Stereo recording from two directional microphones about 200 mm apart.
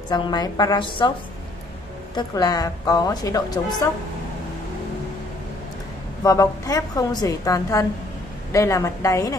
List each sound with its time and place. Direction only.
0.1 s a woman's voice: 20° left (ahead or behind)
2.1 s a woman's voice: 20° left (ahead or behind)
6.2 s a woman's voice: 15° left (ahead or behind)